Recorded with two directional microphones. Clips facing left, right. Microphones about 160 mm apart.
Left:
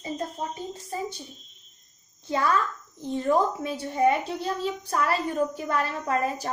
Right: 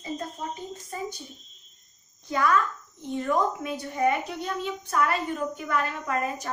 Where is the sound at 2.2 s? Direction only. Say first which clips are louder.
Right 1 dB; 30° left (ahead or behind).